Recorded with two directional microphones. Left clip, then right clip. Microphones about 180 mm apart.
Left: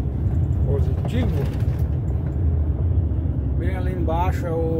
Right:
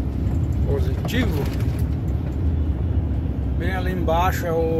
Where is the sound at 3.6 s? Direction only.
Centre (ahead or behind).